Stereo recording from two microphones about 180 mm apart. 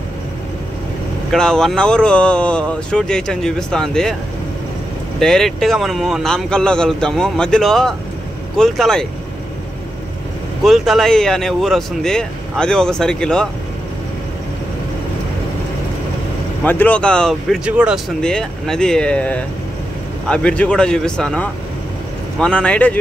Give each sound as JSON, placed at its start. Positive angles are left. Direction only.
{"t": 1.3, "sound": "speech", "side_deg": 5}
{"t": 5.2, "sound": "speech", "side_deg": 0}
{"t": 10.6, "sound": "speech", "side_deg": 0}
{"t": 16.6, "sound": "speech", "side_deg": 10}